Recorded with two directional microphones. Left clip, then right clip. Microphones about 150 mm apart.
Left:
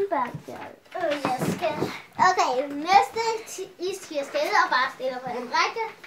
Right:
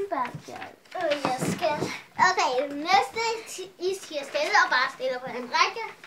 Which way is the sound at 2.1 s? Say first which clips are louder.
Left 1 dB; 45° left (ahead or behind).